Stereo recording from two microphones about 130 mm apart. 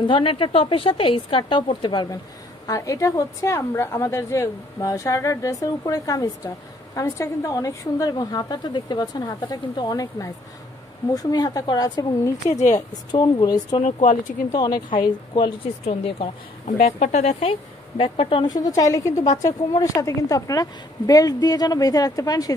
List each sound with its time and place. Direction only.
0.0 s a woman's voice: 40° left (ahead or behind)
13.1 s a woman's voice: 30° left (ahead or behind)
13.8 s speech: 80° left
14.5 s a woman's voice: 30° left (ahead or behind); by 16.3 s 50° left (ahead or behind)
16.6 s a woman's voice: 70° left (ahead or behind); by 19.1 s 25° left (ahead or behind)
19.1 s a woman's voice: 65° left (ahead or behind)
19.8 s a woman's voice: 25° left (ahead or behind)